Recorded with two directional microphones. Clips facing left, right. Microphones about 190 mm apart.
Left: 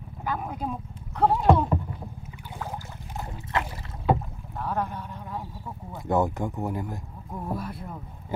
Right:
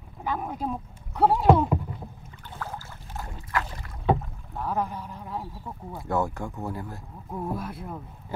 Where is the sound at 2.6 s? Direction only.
15° left (ahead or behind).